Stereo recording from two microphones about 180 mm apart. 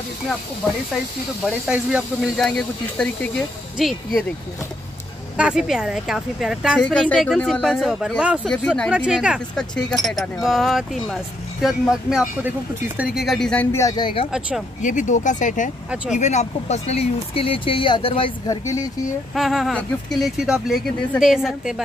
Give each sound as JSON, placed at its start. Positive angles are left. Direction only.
{"t": 1.4, "sound": "speech", "side_deg": -5}
{"t": 5.4, "sound": "speech", "side_deg": -5}
{"t": 14.8, "sound": "speech", "side_deg": 45}
{"t": 18.5, "sound": "speech", "side_deg": 20}
{"t": 19.3, "sound": "speech", "side_deg": 0}